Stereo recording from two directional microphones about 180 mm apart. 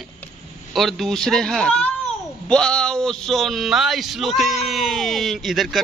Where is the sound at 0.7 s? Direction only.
Centre (ahead or behind).